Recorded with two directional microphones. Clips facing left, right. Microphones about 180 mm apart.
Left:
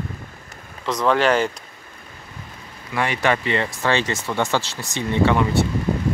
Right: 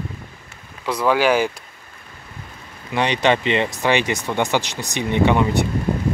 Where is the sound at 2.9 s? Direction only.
20° right (ahead or behind).